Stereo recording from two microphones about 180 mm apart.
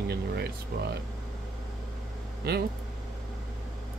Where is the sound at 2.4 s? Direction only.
60° right (ahead or behind).